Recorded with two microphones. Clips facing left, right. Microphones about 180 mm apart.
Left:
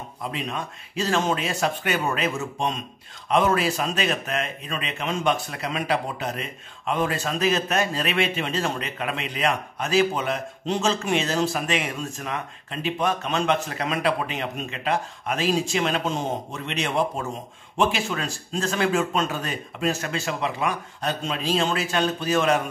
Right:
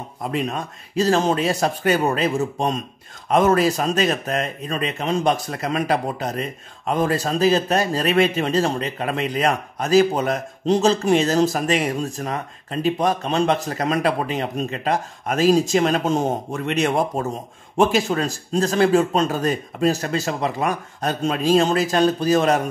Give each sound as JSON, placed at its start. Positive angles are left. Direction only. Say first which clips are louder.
{"t": 0.2, "sound": "speech", "louder": "right 6 dB", "side_deg": -45}